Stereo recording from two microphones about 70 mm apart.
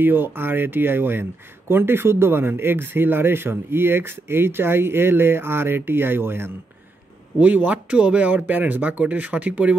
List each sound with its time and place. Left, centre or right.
0.0 s speech: right
7.3 s speech: right